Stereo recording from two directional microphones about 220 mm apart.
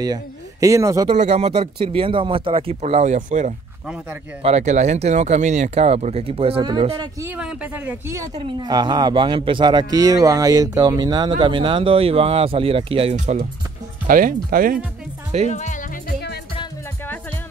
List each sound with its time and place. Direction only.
0.0 s speech: 15° right (ahead or behind)
1.0 s speech: 30° right (ahead or behind)
3.8 s speech: 5° right (ahead or behind)
4.4 s speech: 30° right (ahead or behind)
7.2 s speech: 5° right (ahead or behind); by 13.5 s 30° right (ahead or behind)
14.0 s speech: 40° right (ahead or behind)
15.4 s music: 35° left (ahead or behind)